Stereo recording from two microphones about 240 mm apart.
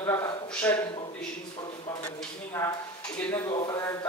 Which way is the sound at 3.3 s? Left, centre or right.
Centre.